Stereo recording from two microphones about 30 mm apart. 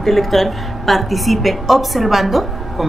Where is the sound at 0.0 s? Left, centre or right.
Centre.